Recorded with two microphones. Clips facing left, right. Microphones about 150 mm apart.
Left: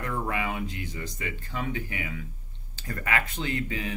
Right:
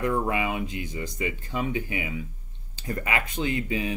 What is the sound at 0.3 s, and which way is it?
Speech, 15° right (ahead or behind).